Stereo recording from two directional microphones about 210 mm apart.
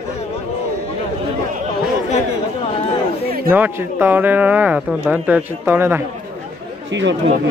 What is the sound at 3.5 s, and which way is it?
Speech, 10° right (ahead or behind).